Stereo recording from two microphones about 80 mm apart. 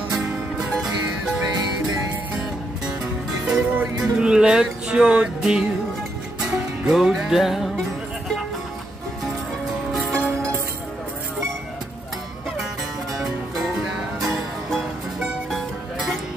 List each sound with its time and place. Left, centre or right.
0.1 s music: centre
3.4 s music: centre
9.9 s music: centre
13.2 s music: centre